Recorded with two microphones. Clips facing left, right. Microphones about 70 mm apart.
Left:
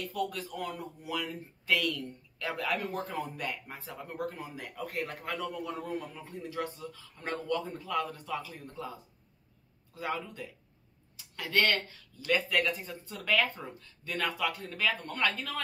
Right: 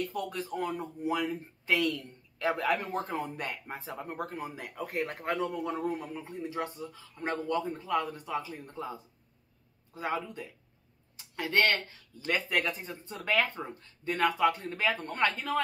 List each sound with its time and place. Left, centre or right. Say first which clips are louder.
0.0 s speech: even; right
9.9 s speech: right 2 dB; right